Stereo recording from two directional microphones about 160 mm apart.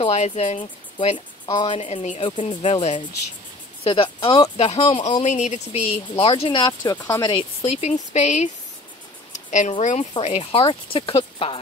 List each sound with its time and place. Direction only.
0.0 s speech: 40° left (ahead or behind)
1.8 s speech: 45° left (ahead or behind)
5.2 s speech: 45° left (ahead or behind); by 7.4 s 25° left (ahead or behind)
7.7 s speech: 45° left (ahead or behind)